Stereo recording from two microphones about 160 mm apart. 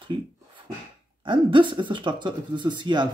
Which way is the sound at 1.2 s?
30° right (ahead or behind).